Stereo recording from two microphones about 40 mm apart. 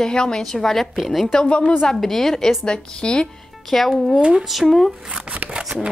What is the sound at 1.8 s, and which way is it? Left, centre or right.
Speech, centre.